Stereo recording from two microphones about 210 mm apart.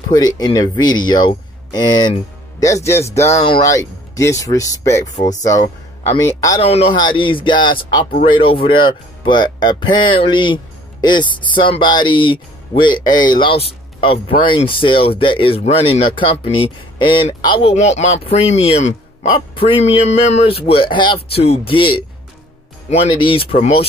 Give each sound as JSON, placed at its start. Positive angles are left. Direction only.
{"t": 0.1, "sound": "speech", "side_deg": 20}
{"t": 3.3, "sound": "speech", "side_deg": 25}
{"t": 6.6, "sound": "speech", "side_deg": 30}